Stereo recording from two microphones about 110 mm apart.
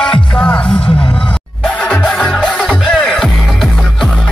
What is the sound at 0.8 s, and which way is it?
Music, 60° left (ahead or behind).